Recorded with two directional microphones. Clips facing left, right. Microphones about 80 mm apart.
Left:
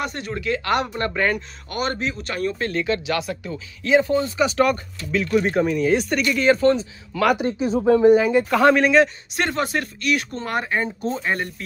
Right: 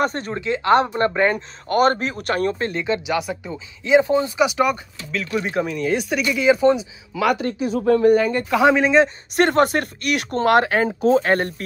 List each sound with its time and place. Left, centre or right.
0.0 s speech: right
0.4 s speech: right
1.7 s speech: right
2.6 s speech: right
5.1 s speech: centre
7.5 s speech: left
7.8 s speech: centre
8.5 s speech: centre
9.3 s speech: right
11.3 s speech: right